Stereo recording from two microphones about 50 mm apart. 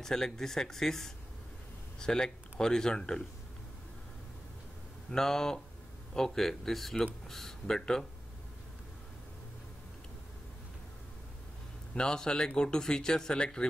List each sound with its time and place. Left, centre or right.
0.0 s speech: centre
5.1 s speech: centre
11.9 s speech: centre